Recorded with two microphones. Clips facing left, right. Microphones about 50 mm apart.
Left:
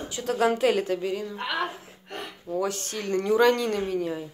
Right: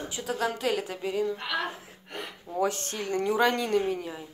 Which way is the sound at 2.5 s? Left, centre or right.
Right.